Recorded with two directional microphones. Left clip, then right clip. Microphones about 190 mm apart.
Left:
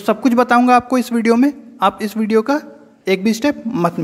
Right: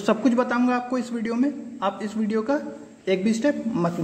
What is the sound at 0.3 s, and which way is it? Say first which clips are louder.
A man's voice: left 11 dB; 30° left (ahead or behind).